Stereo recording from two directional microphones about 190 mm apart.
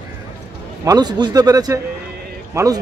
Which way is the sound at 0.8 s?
20° right (ahead or behind).